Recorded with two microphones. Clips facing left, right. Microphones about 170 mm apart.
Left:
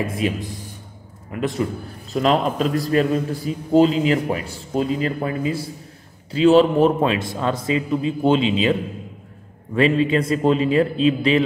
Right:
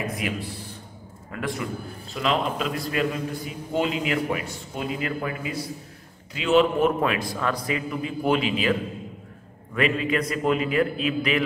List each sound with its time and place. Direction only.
0.0 s a man's voice: 25° left (ahead or behind)
2.1 s a man's voice: 40° left (ahead or behind); by 8.7 s 25° left (ahead or behind)
9.8 s a man's voice: 30° left (ahead or behind)